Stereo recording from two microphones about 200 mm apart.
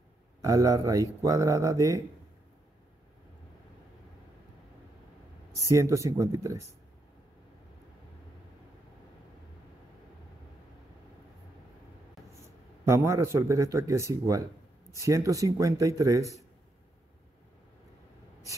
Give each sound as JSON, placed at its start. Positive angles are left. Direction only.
{"t": 0.4, "sound": "speech", "side_deg": -15}
{"t": 5.7, "sound": "speech", "side_deg": -15}
{"t": 12.8, "sound": "speech", "side_deg": -15}